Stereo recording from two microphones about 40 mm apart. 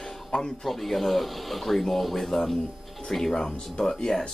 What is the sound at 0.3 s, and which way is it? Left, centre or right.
Speech, left.